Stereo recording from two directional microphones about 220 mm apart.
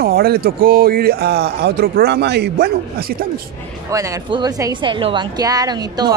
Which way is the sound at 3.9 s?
15° right (ahead or behind).